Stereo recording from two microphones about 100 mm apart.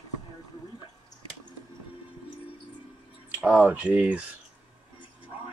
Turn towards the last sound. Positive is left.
turn(degrees=-15)  # may be behind; listen again after turning